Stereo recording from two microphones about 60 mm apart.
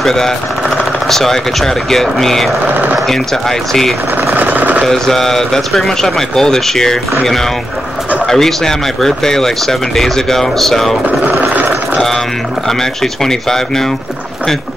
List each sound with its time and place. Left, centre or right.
0.0 s speech: centre
2.6 s speech: right
3.1 s speech: centre
4.3 s a sound: right
4.8 s speech: centre
8.3 s speech: centre
11.1 s vehicle: right
12.6 s speech: centre